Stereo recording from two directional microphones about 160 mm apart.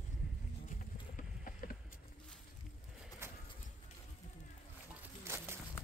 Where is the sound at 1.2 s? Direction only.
55° left (ahead or behind).